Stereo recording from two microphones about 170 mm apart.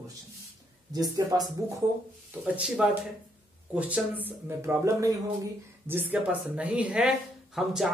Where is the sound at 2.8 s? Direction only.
5° right (ahead or behind).